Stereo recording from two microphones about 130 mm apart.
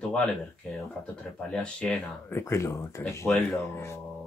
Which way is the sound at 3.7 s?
20° left (ahead or behind).